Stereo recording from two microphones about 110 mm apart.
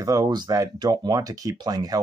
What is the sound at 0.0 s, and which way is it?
Speech, 35° right (ahead or behind).